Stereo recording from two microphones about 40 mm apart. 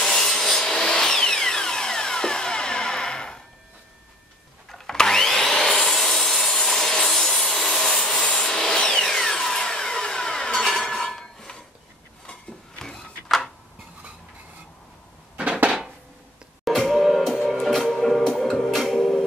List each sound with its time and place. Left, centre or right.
0.0 s wood: centre
4.6 s sawing: centre
7.9 s rub: centre
8.8 s a sound: centre
16.6 s music: centre
17.2 s music: centre
18.2 s music: centre